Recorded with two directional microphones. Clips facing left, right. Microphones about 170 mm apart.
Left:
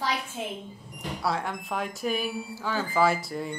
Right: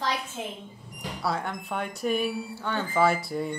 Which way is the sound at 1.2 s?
Centre (ahead or behind).